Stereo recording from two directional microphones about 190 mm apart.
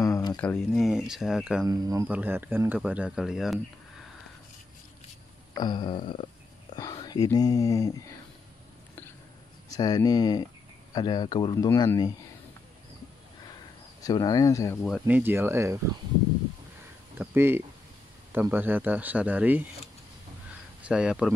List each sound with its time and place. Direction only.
0.0 s a sound: 20° left (ahead or behind)
0.4 s speech: 5° left (ahead or behind)
1.7 s speech: 15° right (ahead or behind)
5.5 s speech: 25° left (ahead or behind)
9.8 s a man's voice: 20° left (ahead or behind)
14.0 s a man's voice: 20° left (ahead or behind)
14.8 s speech: 5° right (ahead or behind)
17.2 s speech: 10° right (ahead or behind)
20.8 s speech: 5° right (ahead or behind)